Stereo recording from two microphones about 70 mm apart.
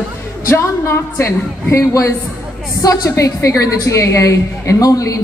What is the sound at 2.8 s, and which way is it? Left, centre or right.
A woman's voice, left.